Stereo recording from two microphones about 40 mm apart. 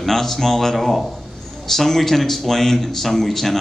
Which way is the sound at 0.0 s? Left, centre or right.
Centre.